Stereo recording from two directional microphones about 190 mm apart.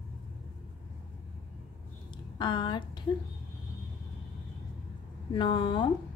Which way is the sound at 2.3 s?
25° left (ahead or behind).